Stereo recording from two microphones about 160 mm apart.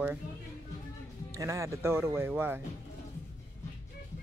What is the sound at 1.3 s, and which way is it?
Speech, 20° right (ahead or behind).